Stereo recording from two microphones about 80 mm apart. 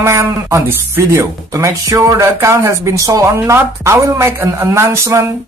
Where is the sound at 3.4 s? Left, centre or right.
Right.